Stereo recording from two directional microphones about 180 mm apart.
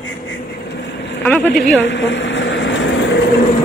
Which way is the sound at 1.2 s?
10° left (ahead or behind).